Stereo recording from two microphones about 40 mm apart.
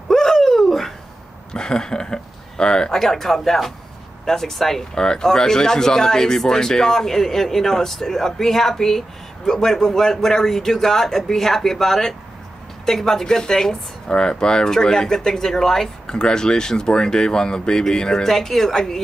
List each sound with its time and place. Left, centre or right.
0.1 s a sound: centre
1.5 s speech: centre
3.0 s speech: centre